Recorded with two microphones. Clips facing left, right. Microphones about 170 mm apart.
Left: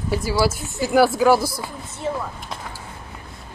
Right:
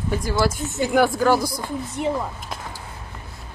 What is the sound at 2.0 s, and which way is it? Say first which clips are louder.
Speech: right 2 dB; 15° right (ahead or behind).